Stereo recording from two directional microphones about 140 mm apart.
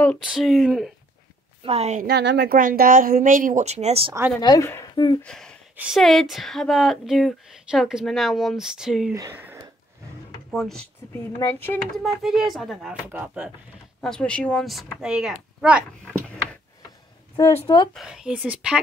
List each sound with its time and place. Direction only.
0.2 s speech: 5° right (ahead or behind)
1.6 s speech: 45° right (ahead or behind)
2.0 s speech: 85° right
3.6 s speech: 50° right (ahead or behind)
4.4 s speech: 30° left (ahead or behind)
5.2 s speech: 5° left (ahead or behind)
9.1 s speech: 20° right (ahead or behind)
10.5 s speech: centre (ahead or behind)
11.3 s speech: 15° left (ahead or behind)
11.9 s speech: centre (ahead or behind)
14.0 s speech: 5° left (ahead or behind)
17.5 s speech: 40° left (ahead or behind)
17.9 s speech: 5° right (ahead or behind)